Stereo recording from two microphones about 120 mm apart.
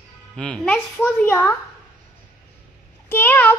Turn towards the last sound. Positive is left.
turn(degrees=15)  # may be behind; listen again after turning